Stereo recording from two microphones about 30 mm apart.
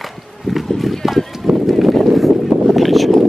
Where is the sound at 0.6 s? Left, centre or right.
Centre.